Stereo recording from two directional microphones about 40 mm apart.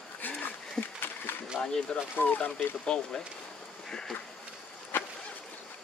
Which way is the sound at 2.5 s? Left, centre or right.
Left.